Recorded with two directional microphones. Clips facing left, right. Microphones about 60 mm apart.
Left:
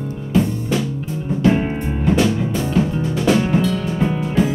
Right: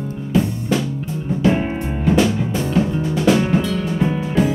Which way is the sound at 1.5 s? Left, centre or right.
Centre.